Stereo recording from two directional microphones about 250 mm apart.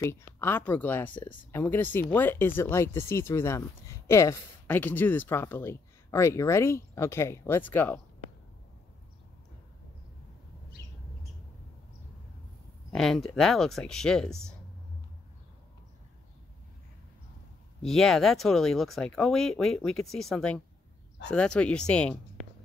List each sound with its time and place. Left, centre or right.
0.0 s speech: centre
10.8 s bird: left
12.9 s speech: centre
17.8 s speech: centre